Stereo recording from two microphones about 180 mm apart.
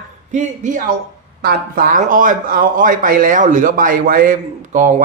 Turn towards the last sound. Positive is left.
turn(degrees=-45)  # may be behind; listen again after turning